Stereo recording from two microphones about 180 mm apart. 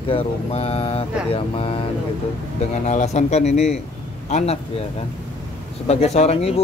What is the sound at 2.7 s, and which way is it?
Speech, 40° left (ahead or behind).